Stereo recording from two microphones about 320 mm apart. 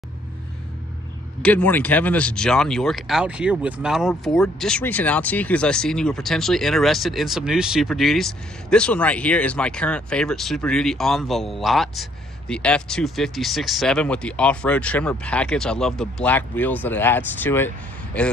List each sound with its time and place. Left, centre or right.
1.4 s speech: centre